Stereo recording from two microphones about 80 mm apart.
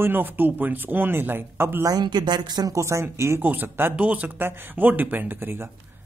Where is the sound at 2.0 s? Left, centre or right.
Right.